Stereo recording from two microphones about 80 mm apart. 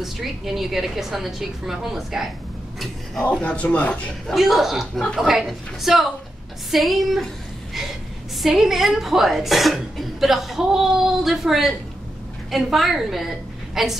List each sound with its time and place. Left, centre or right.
0.0 s speech: centre
3.3 s speech: centre
4.3 s speech: centre
8.4 s speech: centre